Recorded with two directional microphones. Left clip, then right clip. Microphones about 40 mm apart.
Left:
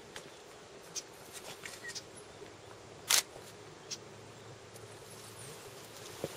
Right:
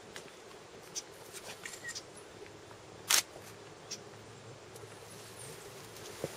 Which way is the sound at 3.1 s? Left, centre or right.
Left.